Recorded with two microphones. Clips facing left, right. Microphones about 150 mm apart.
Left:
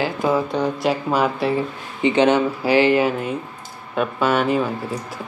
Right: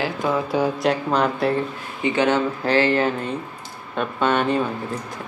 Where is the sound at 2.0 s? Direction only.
20° left (ahead or behind); by 4.6 s 5° left (ahead or behind).